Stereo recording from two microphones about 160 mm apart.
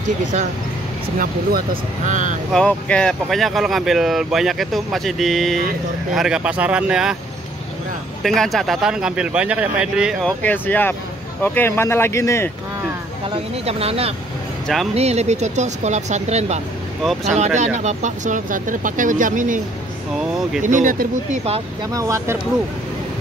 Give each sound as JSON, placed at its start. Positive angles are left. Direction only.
{"t": 1.2, "sound": "speech", "side_deg": -60}
{"t": 2.5, "sound": "speech", "side_deg": 5}
{"t": 8.2, "sound": "speech", "side_deg": 0}
{"t": 10.2, "sound": "speech", "side_deg": 10}
{"t": 13.7, "sound": "speech", "side_deg": -40}
{"t": 17.0, "sound": "speech", "side_deg": 0}
{"t": 17.6, "sound": "speech", "side_deg": -45}
{"t": 20.6, "sound": "speech", "side_deg": -55}
{"t": 21.9, "sound": "speech", "side_deg": -20}